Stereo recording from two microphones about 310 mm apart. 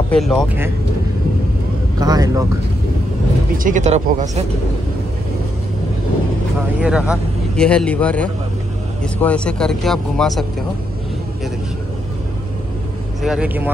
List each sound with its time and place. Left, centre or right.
0.1 s speech: centre
2.0 s speech: centre
3.5 s speech: right
6.8 s speech: centre
13.2 s speech: centre